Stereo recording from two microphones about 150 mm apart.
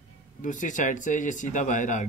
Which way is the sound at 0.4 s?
60° left (ahead or behind).